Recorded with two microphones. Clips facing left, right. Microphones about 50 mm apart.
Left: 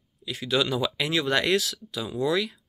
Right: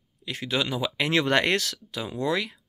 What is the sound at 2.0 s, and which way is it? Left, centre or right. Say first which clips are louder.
Speech: left 1 dB; right.